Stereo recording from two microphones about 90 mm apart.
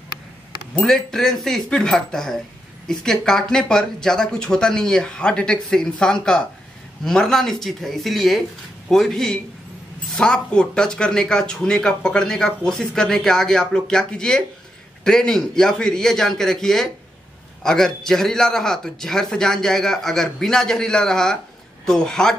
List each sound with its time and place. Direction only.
0.7 s a man's voice: 5° left (ahead or behind)